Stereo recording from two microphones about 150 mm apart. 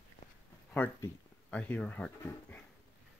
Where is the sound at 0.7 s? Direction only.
10° left (ahead or behind).